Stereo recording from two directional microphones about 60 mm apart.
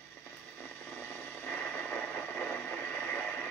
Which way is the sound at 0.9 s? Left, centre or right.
Left.